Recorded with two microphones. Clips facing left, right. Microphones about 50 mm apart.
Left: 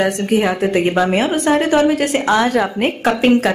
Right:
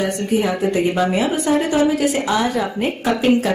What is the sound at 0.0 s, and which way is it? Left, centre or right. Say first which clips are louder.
A woman's voice: left 3 dB; left.